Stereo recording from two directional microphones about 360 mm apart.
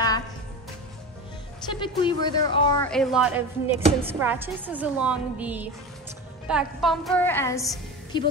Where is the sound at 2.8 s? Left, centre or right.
Centre.